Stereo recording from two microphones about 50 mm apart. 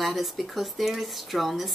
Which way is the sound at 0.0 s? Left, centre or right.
Centre.